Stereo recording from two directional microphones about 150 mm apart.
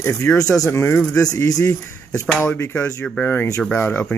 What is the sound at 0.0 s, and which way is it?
Speech, 20° left (ahead or behind).